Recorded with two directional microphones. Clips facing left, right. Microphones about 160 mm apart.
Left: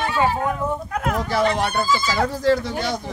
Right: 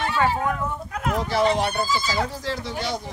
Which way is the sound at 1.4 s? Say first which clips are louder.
Even; 60° left (ahead or behind).